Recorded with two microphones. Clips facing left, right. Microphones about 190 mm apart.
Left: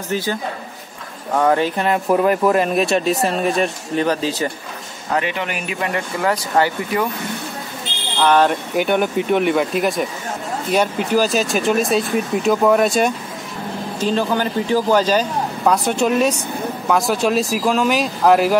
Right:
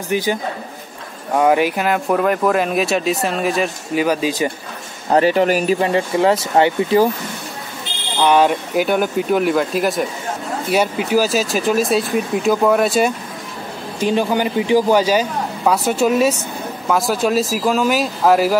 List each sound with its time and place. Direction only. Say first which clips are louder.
0.1 s speech: right 3 dB; 15° right (ahead or behind)
1.9 s speech: left 4 dB; centre (ahead or behind)
5.1 s speech: right 8 dB; 40° right (ahead or behind)
8.2 s speech: right 1 dB; 10° right (ahead or behind)
13.9 s speech: right 2 dB; 15° right (ahead or behind)